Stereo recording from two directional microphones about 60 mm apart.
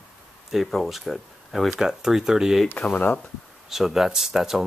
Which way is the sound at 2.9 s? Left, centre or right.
Left.